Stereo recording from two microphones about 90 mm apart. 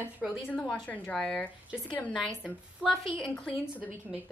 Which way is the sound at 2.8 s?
10° right (ahead or behind).